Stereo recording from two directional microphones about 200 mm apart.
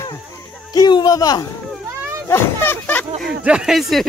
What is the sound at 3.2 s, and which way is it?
Speech, 5° right (ahead or behind).